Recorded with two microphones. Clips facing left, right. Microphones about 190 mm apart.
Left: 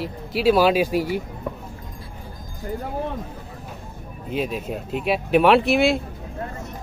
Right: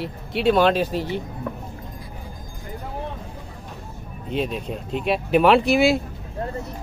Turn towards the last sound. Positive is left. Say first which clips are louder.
# even
turn(degrees=0)  # may be behind; listen again after turning